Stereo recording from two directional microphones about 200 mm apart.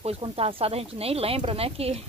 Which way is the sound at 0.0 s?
30° right (ahead or behind).